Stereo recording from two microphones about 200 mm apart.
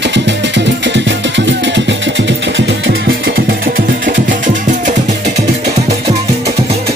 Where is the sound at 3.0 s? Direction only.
50° right (ahead or behind).